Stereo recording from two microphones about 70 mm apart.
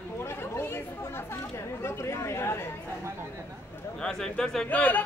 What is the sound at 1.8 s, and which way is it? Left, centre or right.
Speech, left.